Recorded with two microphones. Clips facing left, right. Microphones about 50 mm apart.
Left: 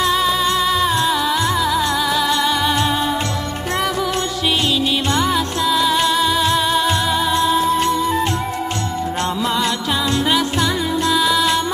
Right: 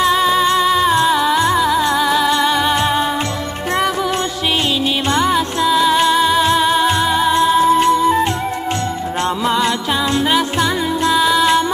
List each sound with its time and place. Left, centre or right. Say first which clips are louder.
0.0 s music: right 3 dB; centre
5.1 s music: right 3 dB; centre
7.4 s music: right 6 dB; centre
9.4 s music: right 4 dB; centre